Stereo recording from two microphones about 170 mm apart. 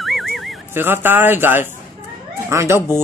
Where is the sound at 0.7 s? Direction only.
15° right (ahead or behind).